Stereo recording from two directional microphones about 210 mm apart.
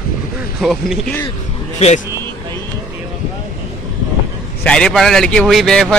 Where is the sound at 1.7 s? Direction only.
30° left (ahead or behind).